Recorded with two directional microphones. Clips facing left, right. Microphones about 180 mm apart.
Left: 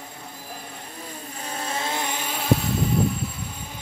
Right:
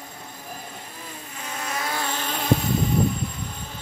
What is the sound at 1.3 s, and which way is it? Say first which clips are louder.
Vehicle: left 1 dB; 30° left (ahead or behind).